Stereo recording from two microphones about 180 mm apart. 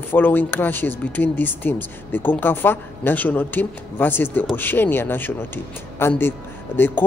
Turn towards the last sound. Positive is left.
turn(degrees=10)  # may be behind; listen again after turning